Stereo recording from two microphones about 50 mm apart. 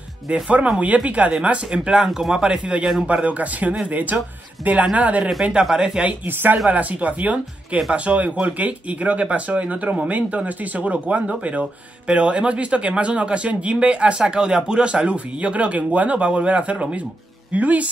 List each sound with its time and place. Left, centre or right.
0.3 s a man's voice: right
5.4 s speech: centre
6.2 s a man's voice: right